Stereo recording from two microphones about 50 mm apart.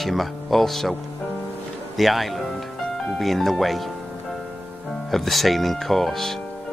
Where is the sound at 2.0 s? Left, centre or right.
Centre.